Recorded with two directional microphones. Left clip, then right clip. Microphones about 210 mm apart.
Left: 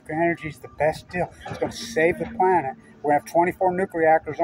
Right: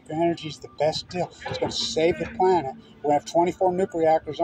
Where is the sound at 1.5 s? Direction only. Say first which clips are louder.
Even; 15° left (ahead or behind).